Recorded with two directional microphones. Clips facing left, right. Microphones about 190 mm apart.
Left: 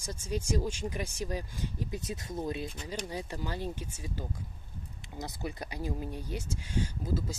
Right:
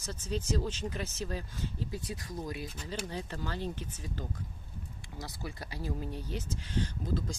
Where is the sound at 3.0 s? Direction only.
15° left (ahead or behind).